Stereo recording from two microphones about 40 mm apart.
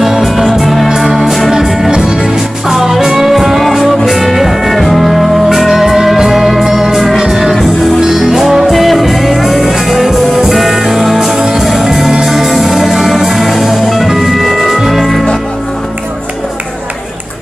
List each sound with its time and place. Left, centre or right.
0.2 s music: centre
11.3 s music: centre